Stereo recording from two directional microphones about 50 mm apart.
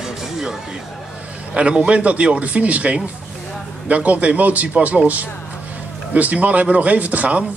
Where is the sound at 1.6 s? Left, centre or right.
Right.